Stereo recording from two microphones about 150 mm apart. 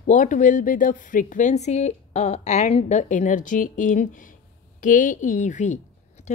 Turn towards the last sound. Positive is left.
turn(degrees=55)  # may be behind; listen again after turning